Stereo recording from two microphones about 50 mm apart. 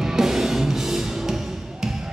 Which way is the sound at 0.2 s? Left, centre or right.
Centre.